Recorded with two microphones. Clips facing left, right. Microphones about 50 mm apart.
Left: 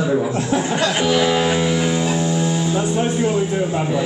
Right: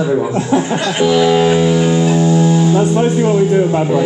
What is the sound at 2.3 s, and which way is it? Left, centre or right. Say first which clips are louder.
Music: right 8 dB; centre.